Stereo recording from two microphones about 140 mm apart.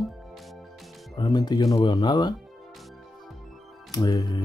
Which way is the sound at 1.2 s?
30° left (ahead or behind).